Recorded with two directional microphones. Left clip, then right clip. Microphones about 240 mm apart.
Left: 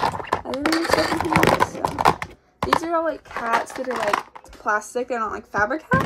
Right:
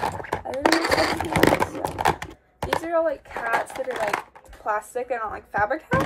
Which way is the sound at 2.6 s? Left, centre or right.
Centre.